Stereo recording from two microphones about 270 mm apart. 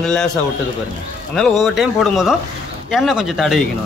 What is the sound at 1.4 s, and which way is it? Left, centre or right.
Speech, centre.